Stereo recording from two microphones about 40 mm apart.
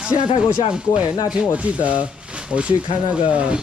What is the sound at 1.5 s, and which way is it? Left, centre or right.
Speech, right.